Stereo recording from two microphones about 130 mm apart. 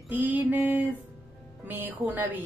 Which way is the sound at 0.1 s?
15° right (ahead or behind).